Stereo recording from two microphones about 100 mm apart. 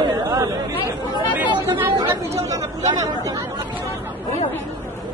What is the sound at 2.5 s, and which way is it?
Speech, 35° right (ahead or behind).